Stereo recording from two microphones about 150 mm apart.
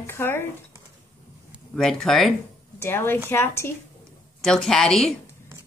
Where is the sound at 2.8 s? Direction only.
15° left (ahead or behind).